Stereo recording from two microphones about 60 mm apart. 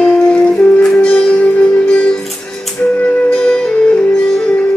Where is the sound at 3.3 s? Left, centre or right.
Centre.